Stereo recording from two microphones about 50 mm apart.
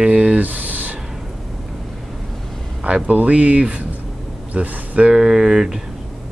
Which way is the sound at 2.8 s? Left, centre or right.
Right.